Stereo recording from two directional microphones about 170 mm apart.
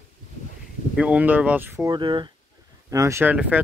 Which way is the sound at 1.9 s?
30° right (ahead or behind).